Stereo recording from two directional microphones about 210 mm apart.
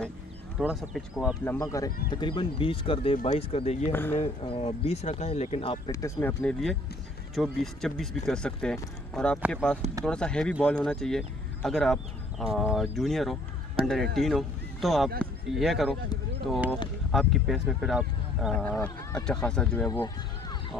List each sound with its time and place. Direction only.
0.6 s speech: centre (ahead or behind); by 3.9 s 30° left (ahead or behind)
3.9 s speech: 10° left (ahead or behind)
4.2 s speech: 25° left (ahead or behind)
5.9 s speech: 15° left (ahead or behind)
19.9 s speech: 15° left (ahead or behind)